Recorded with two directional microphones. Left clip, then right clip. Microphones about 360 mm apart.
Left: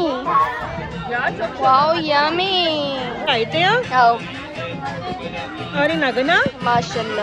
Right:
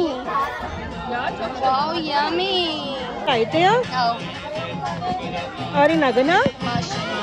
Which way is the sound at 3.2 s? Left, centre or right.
Right.